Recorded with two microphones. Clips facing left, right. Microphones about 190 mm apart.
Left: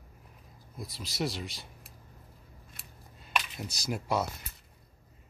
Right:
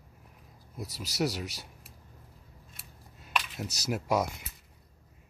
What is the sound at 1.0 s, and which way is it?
Speech, 10° right (ahead or behind).